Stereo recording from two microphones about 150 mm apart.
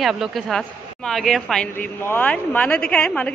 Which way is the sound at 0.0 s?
Centre (ahead or behind).